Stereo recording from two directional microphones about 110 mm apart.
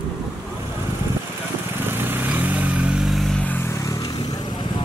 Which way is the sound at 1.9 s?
20° right (ahead or behind).